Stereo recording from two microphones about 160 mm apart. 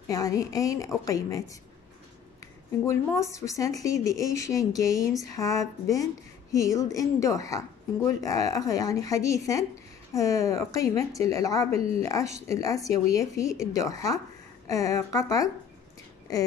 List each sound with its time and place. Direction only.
0.1 s a woman's voice: 20° left (ahead or behind)